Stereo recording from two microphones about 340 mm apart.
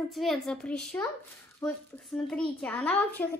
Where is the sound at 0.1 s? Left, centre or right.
Centre.